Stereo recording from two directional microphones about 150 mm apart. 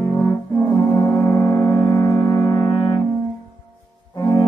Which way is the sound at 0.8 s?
25° left (ahead or behind).